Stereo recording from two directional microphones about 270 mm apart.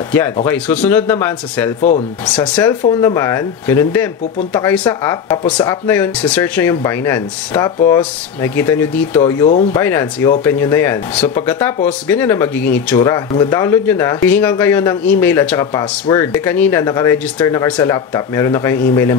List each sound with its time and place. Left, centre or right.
0.5 s speech: centre
1.8 s speech: left
2.5 s speech: centre